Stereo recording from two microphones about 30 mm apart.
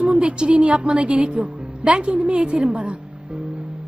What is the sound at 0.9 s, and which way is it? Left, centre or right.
A woman's voice, right.